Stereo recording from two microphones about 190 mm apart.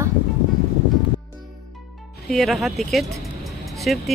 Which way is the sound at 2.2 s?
Centre (ahead or behind).